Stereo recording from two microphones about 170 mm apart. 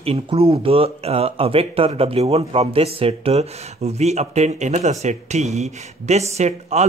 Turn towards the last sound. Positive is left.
turn(degrees=-40)  # may be behind; listen again after turning